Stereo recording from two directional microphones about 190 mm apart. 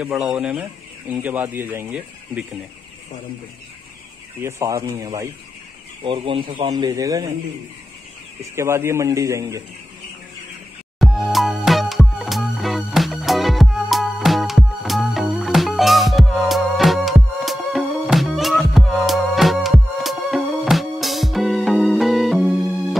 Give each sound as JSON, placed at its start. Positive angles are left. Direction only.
{"t": 0.0, "sound": "speech", "side_deg": -5}
{"t": 4.4, "sound": "speech", "side_deg": -15}
{"t": 6.0, "sound": "speech", "side_deg": -30}
{"t": 8.5, "sound": "speech", "side_deg": -15}
{"t": 11.0, "sound": "music", "side_deg": 0}